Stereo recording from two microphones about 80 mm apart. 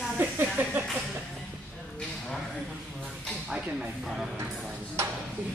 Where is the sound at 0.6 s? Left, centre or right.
Right.